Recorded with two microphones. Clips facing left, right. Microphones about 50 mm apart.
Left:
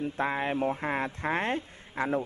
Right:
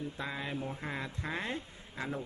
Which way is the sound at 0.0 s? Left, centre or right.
Left.